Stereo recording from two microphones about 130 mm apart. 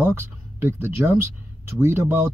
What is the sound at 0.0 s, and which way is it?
Speech, 20° right (ahead or behind).